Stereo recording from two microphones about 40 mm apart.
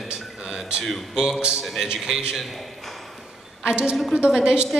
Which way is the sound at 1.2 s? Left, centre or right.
Centre.